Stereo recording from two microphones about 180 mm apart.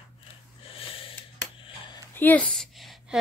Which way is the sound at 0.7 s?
30° left (ahead or behind).